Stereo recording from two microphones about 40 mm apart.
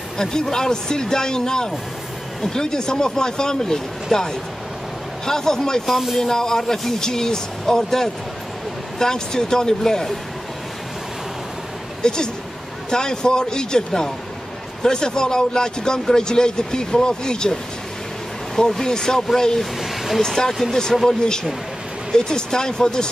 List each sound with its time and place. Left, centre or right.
0.2 s speech: centre
5.9 s speech: centre
6.2 s speech: centre
12.0 s speech: centre
18.6 s speech: centre
19.6 s speech: centre
20.2 s speech: centre